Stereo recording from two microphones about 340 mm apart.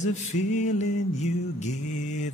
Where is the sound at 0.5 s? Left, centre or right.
Centre.